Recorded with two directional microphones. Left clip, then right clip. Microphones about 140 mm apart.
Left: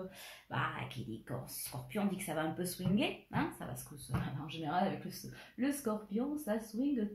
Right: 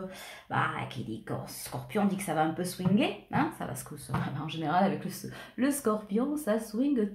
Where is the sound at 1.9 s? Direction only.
5° right (ahead or behind).